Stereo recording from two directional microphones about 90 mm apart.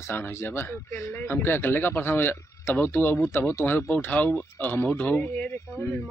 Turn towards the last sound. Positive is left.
turn(degrees=25)  # may be behind; listen again after turning